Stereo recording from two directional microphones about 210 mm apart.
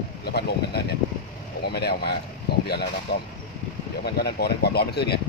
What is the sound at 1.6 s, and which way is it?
Speech, 50° left (ahead or behind).